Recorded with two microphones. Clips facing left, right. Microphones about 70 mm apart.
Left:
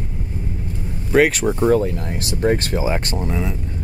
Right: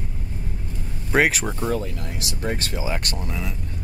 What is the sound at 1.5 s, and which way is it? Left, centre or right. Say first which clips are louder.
Speech: left 9 dB; left.